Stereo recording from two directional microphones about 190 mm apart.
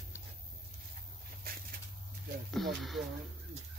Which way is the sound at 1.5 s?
50° right (ahead or behind).